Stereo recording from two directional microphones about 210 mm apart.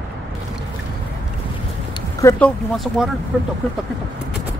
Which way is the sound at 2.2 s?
10° left (ahead or behind).